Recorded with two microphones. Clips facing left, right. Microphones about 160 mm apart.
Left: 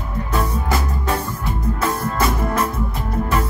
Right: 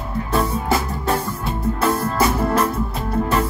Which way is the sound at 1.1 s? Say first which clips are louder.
Right 2 dB; 30° right (ahead or behind).